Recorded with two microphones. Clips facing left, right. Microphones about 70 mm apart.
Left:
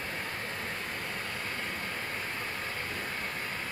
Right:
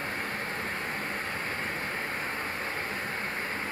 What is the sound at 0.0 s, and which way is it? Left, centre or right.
Vehicle, right.